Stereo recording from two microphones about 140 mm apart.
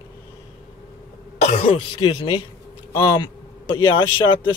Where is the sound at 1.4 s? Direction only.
60° left (ahead or behind).